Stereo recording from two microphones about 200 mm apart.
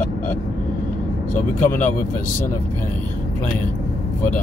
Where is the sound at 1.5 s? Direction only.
10° left (ahead or behind).